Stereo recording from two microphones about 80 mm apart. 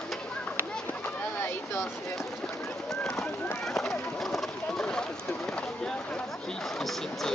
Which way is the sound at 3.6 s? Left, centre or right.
Centre.